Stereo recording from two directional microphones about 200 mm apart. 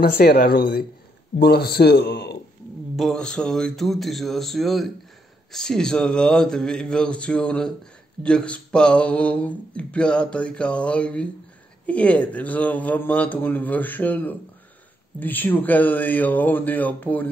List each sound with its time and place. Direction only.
0.0 s a man's voice: 50° left (ahead or behind)
3.0 s a man's voice: centre (ahead or behind)